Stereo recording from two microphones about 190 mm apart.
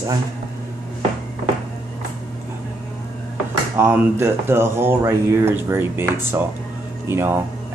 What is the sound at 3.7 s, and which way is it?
Speech, 10° right (ahead or behind).